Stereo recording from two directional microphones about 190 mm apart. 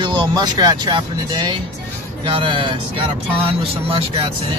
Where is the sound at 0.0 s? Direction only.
25° right (ahead or behind).